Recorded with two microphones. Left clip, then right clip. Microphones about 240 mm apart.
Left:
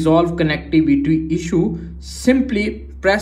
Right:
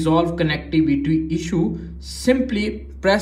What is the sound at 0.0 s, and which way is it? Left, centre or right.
A man's voice, centre.